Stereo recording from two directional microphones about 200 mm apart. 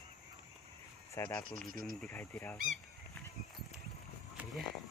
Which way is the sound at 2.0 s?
10° left (ahead or behind).